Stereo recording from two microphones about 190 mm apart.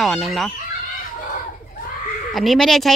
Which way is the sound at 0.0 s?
Centre (ahead or behind).